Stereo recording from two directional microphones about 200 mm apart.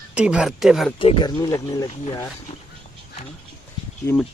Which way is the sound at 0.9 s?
25° left (ahead or behind).